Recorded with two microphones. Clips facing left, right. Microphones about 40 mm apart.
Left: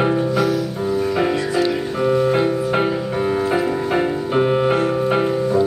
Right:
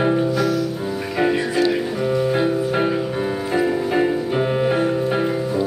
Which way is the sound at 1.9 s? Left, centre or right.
Centre.